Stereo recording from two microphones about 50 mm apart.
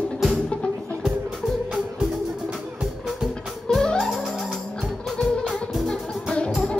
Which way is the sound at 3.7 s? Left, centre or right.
Centre.